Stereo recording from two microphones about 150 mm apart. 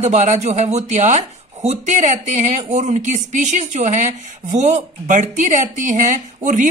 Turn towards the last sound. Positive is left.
turn(degrees=-55)  # may be behind; listen again after turning